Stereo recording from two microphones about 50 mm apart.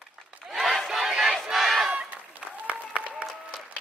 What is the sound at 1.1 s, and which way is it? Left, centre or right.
Battle cry, centre.